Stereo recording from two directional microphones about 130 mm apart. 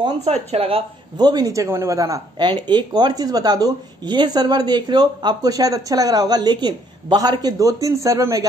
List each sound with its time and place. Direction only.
0.2 s speech: 55° right (ahead or behind)
1.1 s speech: 30° right (ahead or behind)